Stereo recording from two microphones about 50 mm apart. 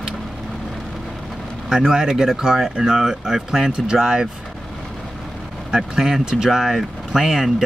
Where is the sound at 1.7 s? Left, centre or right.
Centre.